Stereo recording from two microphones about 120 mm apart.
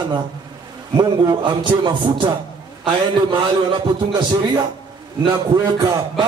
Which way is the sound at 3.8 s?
40° right (ahead or behind).